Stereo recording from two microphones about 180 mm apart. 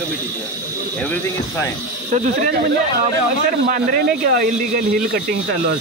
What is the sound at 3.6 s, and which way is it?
Speech, 55° right (ahead or behind).